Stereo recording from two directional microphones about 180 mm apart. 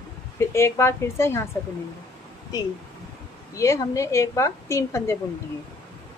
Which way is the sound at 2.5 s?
20° left (ahead or behind).